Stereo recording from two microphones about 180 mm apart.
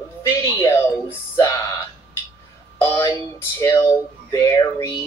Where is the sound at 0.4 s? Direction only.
15° left (ahead or behind).